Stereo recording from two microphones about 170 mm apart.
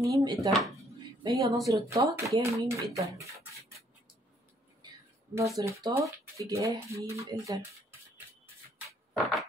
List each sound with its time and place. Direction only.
0.0 s speech: 20° right (ahead or behind)
5.3 s speech: 15° right (ahead or behind)
9.2 s a sound: centre (ahead or behind)